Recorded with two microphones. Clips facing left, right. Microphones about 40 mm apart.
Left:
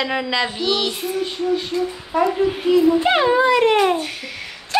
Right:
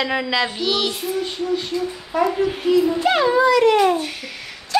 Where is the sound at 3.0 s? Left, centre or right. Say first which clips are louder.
Even; left.